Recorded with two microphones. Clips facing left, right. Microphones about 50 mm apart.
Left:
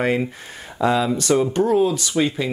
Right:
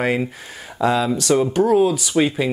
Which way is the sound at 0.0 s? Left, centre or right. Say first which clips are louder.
Even; centre.